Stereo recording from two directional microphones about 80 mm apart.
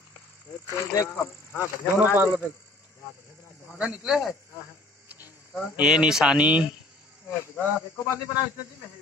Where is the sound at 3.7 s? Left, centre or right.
Centre.